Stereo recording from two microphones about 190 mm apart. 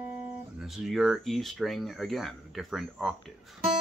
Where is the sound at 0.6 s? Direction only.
Centre (ahead or behind).